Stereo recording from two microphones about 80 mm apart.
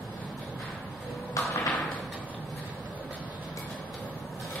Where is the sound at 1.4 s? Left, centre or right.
Left.